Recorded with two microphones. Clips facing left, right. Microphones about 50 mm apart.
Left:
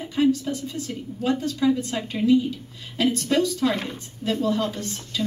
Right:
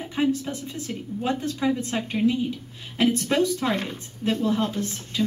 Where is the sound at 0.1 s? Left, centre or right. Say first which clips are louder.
Left 3 dB; right.